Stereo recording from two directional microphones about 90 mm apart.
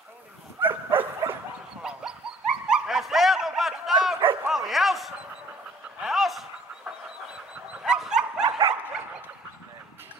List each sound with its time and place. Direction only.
0.6 s dog: 20° right (ahead or behind)
1.8 s dog: 5° right (ahead or behind)
4.5 s bow-wow: centre (ahead or behind)
5.9 s snicker: 5° right (ahead or behind)
7.8 s dog: 5° right (ahead or behind)
8.5 s dog: 80° right